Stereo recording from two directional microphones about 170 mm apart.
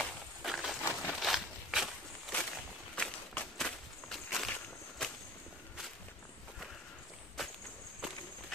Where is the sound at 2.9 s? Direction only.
5° left (ahead or behind).